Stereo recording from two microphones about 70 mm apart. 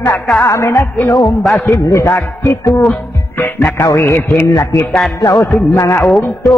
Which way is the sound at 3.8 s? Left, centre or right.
Left.